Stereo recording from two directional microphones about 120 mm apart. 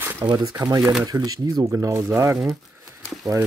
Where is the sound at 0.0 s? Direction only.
15° right (ahead or behind).